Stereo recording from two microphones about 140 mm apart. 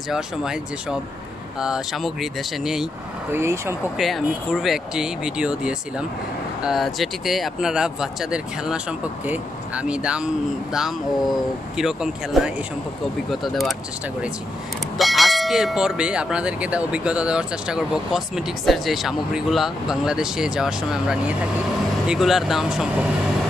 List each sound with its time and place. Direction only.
0.1 s speech: 5° right (ahead or behind)
3.3 s speech: 20° right (ahead or behind)
4.0 s speech: centre (ahead or behind)
15.0 s speech: centre (ahead or behind)